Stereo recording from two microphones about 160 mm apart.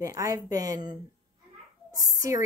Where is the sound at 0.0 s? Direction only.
20° right (ahead or behind).